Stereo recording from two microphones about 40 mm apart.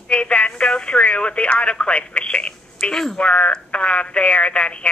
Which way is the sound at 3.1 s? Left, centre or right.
Left.